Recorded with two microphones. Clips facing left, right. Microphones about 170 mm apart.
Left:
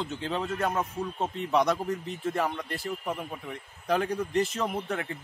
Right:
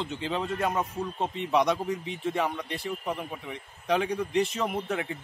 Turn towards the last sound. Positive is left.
turn(degrees=0)  # may be behind; listen again after turning